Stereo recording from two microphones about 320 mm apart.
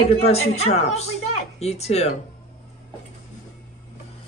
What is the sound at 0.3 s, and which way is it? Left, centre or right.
Speech, centre.